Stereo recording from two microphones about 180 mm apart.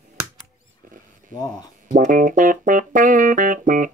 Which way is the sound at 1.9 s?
45° right (ahead or behind).